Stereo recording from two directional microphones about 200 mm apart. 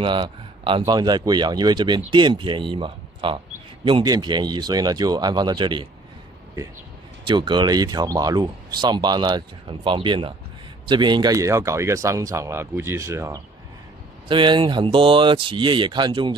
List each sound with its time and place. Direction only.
0.0 s speech: 25° right (ahead or behind)
7.2 s speech: 25° right (ahead or behind)